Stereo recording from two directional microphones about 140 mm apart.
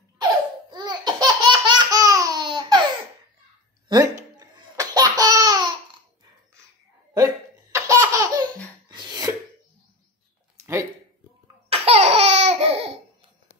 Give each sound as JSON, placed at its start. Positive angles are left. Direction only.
{"t": 0.2, "sound": "laughter", "side_deg": -30}
{"t": 3.9, "sound": "laughter", "side_deg": -30}
{"t": 7.7, "sound": "laughter", "side_deg": -20}
{"t": 8.8, "sound": "a sound", "side_deg": -30}
{"t": 10.6, "sound": "a sound", "side_deg": -20}
{"t": 11.7, "sound": "laughter", "side_deg": -45}